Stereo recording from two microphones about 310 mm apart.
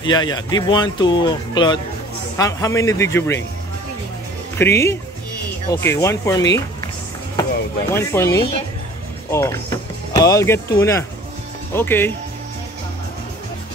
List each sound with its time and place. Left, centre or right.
0.0 s speech: centre
4.6 s speech: centre
7.9 s speech: centre